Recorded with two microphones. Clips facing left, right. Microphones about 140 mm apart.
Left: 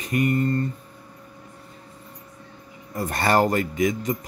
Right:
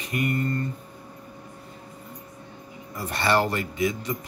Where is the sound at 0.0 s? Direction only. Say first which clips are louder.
Left 4 dB; 40° left (ahead or behind).